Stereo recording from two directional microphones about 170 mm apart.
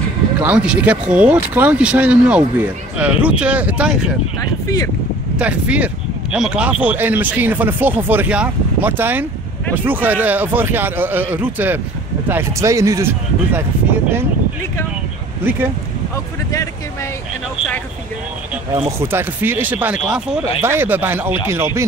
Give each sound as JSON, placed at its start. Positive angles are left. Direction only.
{"t": 0.4, "sound": "speech", "side_deg": -10}
{"t": 4.4, "sound": "speech", "side_deg": 20}
{"t": 5.4, "sound": "speech", "side_deg": -5}
{"t": 18.9, "sound": "speech", "side_deg": -15}